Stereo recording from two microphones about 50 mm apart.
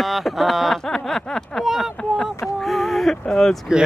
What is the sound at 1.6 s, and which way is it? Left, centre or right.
Speech, centre.